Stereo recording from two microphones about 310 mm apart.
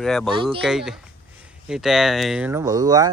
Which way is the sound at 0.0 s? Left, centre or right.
Centre.